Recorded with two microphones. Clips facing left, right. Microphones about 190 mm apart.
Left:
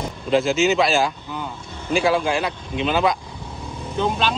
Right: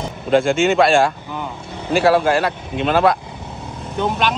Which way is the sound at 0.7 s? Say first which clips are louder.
Right 4 dB; 55° right (ahead or behind).